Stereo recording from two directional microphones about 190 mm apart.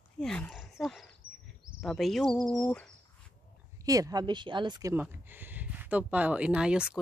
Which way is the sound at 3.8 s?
20° right (ahead or behind).